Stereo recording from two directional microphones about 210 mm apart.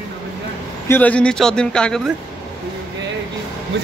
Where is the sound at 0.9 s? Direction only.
5° left (ahead or behind).